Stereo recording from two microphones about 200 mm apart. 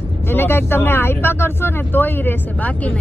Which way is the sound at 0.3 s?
10° left (ahead or behind).